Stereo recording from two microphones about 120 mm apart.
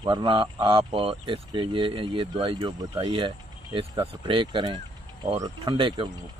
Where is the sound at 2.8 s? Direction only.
30° right (ahead or behind).